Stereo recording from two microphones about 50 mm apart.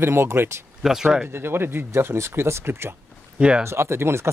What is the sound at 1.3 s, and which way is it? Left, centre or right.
A man's voice, right.